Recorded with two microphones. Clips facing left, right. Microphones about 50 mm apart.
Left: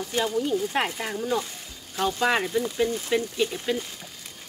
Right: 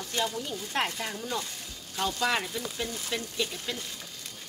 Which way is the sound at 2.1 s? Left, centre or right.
Left.